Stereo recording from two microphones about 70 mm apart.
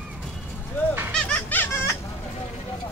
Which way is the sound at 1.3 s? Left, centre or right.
Left.